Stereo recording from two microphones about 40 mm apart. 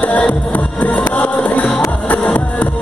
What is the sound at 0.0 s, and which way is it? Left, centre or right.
Music, left.